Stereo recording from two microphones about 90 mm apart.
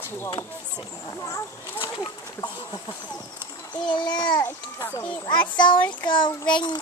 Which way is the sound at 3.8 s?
60° left (ahead or behind).